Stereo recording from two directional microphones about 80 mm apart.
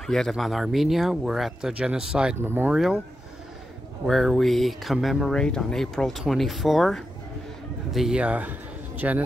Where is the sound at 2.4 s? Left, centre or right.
Right.